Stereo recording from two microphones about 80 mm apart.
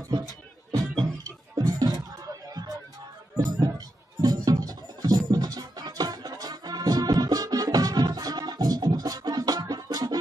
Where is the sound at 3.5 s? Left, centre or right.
Right.